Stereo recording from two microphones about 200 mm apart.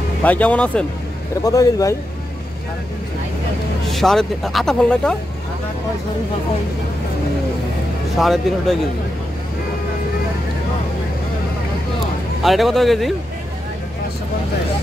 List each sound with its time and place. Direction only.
0.2 s speech: 5° left (ahead or behind)
1.4 s speech: 15° left (ahead or behind)
3.9 s speech: centre (ahead or behind)
8.2 s speech: centre (ahead or behind)
12.4 s speech: centre (ahead or behind)